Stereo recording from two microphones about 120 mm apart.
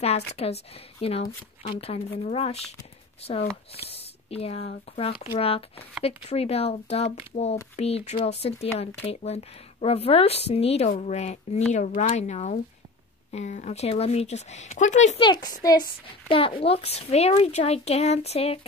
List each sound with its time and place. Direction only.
0.0 s speech: 60° left (ahead or behind)
3.7 s speech: 55° left (ahead or behind)
11.7 s speech: 85° left
12.1 s speech: 65° left (ahead or behind); by 15.1 s 85° left
15.1 s speech: 40° left (ahead or behind)
16.3 s speech: 50° left (ahead or behind)